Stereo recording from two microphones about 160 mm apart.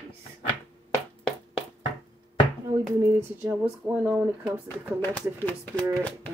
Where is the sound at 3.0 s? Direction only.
20° right (ahead or behind).